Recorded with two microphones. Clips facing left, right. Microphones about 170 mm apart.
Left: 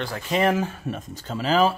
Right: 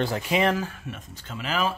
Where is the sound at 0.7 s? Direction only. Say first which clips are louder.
Left 7 dB; 40° left (ahead or behind).